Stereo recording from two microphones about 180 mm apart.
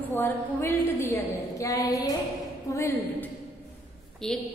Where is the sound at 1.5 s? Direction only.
20° left (ahead or behind).